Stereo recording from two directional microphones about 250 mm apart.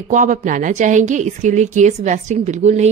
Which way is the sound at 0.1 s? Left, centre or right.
Right.